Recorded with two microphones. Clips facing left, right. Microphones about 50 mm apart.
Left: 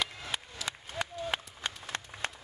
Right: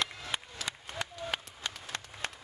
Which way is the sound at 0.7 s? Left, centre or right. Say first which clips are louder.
Left 2 dB; centre.